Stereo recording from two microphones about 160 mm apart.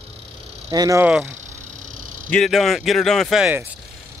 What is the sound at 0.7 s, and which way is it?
Speech, 25° right (ahead or behind).